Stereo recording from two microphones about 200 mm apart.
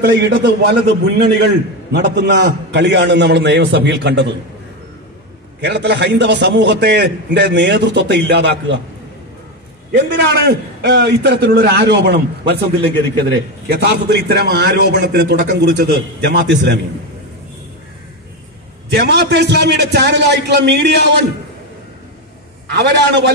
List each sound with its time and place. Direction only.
0.1 s a man's voice: 60° right (ahead or behind)
5.6 s a man's voice: 55° right (ahead or behind)
9.9 s a man's voice: 60° right (ahead or behind)
18.9 s a man's voice: 55° right (ahead or behind)
22.7 s a man's voice: 55° right (ahead or behind)